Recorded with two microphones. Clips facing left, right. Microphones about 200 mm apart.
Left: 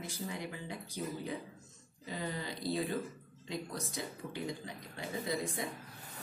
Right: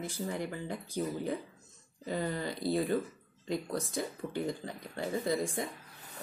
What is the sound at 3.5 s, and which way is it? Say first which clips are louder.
Speech: right 6 dB; 50° right (ahead or behind).